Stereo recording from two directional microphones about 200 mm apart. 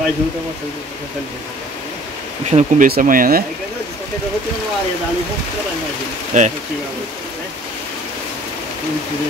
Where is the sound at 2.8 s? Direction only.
45° right (ahead or behind).